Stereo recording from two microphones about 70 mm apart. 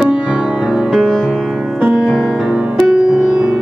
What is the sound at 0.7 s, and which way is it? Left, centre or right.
Music, centre.